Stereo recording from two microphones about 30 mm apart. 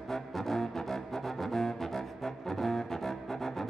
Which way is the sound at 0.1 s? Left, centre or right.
Centre.